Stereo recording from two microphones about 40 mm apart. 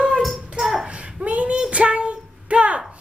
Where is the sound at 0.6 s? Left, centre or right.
Centre.